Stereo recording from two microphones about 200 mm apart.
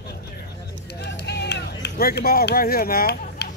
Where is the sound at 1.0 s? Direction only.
55° left (ahead or behind).